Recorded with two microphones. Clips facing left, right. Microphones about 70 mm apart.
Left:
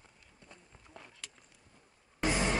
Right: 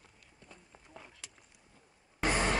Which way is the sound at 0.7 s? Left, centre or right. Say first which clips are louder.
Right 1 dB; centre.